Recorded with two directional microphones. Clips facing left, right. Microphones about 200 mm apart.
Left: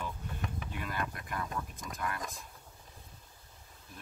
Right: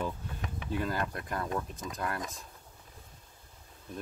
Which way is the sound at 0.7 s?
30° right (ahead or behind).